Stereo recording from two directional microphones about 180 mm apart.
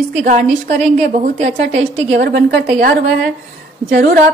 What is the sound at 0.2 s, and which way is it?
A woman's voice, 40° right (ahead or behind).